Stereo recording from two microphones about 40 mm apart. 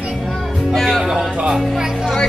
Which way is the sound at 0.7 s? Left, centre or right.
Centre.